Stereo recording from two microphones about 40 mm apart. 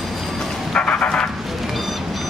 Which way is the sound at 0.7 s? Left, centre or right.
Left.